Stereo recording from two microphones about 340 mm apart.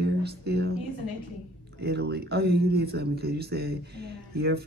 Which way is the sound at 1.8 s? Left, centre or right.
Right.